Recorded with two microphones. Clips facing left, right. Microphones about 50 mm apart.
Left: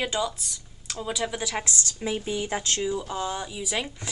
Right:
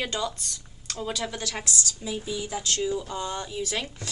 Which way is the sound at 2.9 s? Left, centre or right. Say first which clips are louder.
Left 1 dB; centre.